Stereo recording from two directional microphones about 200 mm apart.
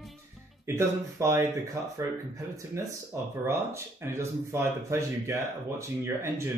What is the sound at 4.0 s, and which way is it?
Speech, 15° right (ahead or behind).